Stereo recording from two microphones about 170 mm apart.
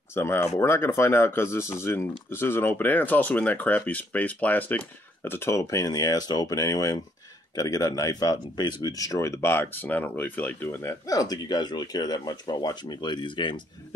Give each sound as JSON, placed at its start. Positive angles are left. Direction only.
{"t": 0.1, "sound": "speech", "side_deg": 15}